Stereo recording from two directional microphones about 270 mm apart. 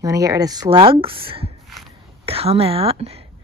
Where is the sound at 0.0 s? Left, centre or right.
Centre.